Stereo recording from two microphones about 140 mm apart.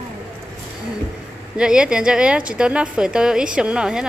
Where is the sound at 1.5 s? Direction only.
5° right (ahead or behind).